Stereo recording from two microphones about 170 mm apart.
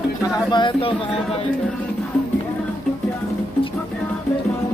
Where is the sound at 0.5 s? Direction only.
25° left (ahead or behind).